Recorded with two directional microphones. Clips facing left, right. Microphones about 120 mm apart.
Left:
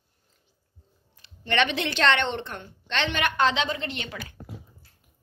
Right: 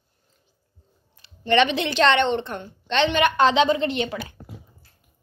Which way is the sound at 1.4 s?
20° right (ahead or behind).